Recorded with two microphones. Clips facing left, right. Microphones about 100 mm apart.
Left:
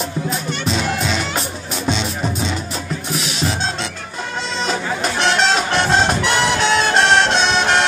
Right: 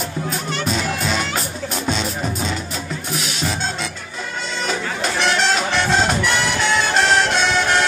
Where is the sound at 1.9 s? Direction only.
5° right (ahead or behind).